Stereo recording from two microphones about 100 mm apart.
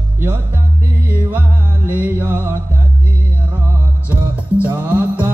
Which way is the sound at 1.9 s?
20° right (ahead or behind).